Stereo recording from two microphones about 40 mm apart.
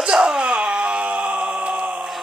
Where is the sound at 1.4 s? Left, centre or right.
Centre.